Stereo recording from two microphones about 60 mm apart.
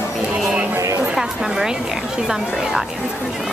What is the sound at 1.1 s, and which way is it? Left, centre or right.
A woman's voice, centre.